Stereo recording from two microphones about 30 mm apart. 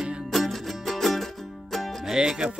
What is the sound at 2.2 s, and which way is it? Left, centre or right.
Music, right.